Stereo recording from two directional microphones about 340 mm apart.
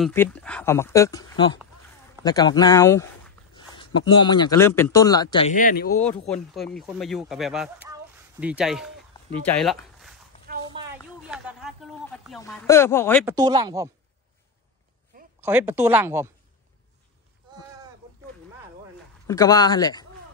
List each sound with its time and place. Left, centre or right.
0.0 s speech: centre; by 5.9 s left
6.2 s speech: centre
10.5 s a sound: centre
11.2 s speech: centre
13.2 s speech: centre
15.4 s speech: centre
19.2 s speech: centre